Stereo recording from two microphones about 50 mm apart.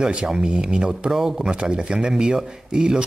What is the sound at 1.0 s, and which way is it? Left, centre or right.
Speech, centre.